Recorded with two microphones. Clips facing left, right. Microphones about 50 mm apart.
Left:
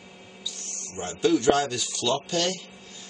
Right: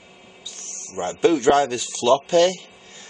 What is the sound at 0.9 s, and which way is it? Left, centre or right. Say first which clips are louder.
Speech: right 4 dB; right.